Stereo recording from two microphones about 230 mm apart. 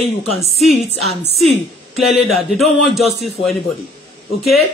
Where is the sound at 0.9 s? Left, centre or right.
Left.